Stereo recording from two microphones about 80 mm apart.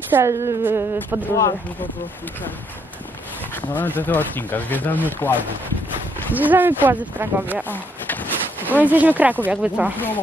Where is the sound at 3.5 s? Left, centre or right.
Left.